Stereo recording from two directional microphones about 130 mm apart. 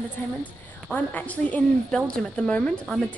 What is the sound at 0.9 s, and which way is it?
A woman's voice, 10° left (ahead or behind).